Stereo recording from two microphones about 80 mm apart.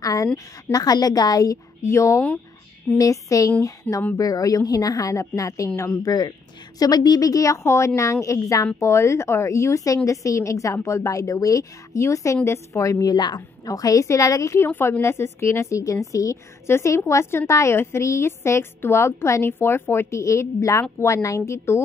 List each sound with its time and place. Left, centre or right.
0.0 s a sound: left
0.7 s a woman's voice: left
3.9 s a woman's voice: left
4.2 s a woman's voice: left
6.0 s a woman's voice: left
13.1 s a woman's voice: left
14.7 s a woman's voice: left